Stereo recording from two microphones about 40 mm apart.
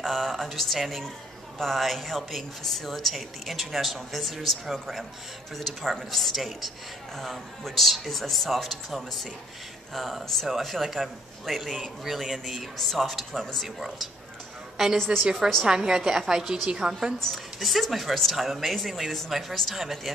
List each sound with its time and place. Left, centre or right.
0.0 s speech: centre
12.7 s speech: centre
13.7 s a woman's voice: centre
15.1 s a woman's voice: right
17.3 s speech: centre